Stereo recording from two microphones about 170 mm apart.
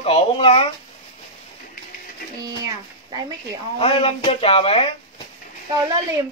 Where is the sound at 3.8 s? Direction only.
35° left (ahead or behind).